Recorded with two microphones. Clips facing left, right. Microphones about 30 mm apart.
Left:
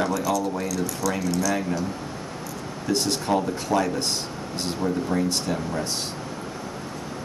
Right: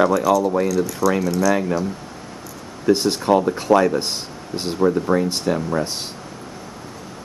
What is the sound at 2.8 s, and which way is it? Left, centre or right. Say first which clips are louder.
Speech: right 7 dB; centre.